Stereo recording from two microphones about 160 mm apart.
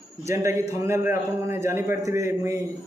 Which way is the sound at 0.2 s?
15° right (ahead or behind).